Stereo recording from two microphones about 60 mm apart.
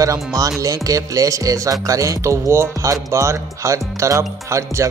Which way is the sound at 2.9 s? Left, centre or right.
Right.